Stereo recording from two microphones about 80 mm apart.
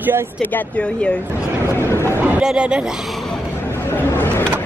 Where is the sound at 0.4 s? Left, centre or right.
Left.